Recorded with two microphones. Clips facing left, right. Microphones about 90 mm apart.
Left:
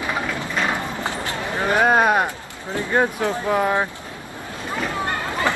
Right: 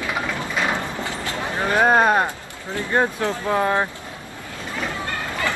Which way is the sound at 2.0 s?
10° left (ahead or behind).